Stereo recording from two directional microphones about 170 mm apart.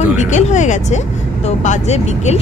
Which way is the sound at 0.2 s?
45° left (ahead or behind).